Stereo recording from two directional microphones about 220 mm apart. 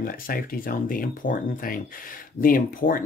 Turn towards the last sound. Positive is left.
turn(degrees=40)  # may be behind; listen again after turning